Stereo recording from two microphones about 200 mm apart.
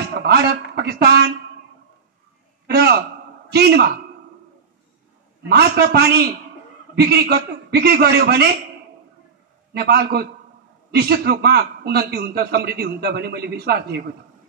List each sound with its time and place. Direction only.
0.1 s speech: 50° right (ahead or behind)
2.6 s a man's voice: 55° right (ahead or behind)
5.5 s a man's voice: 50° right (ahead or behind)
9.8 s a man's voice: 50° right (ahead or behind)